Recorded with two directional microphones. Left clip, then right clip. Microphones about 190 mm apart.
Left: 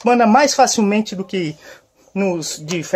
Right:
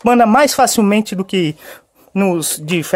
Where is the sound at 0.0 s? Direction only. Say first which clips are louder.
Right 2 dB; 50° right (ahead or behind).